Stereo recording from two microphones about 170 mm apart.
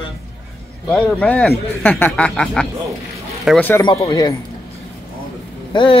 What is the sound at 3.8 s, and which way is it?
Speech, 25° left (ahead or behind).